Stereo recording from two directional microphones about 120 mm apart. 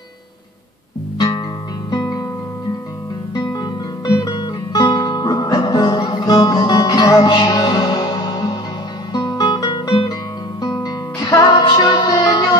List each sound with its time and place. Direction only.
1.1 s music: 35° left (ahead or behind)
3.3 s music: 35° left (ahead or behind)
9.1 s guitar: 30° left (ahead or behind)
10.6 s music: 30° left (ahead or behind)